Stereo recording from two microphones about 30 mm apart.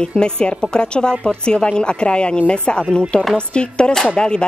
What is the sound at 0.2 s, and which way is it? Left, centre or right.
A woman's voice, left.